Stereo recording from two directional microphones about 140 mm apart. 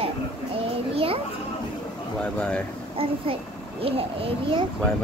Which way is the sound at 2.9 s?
40° right (ahead or behind).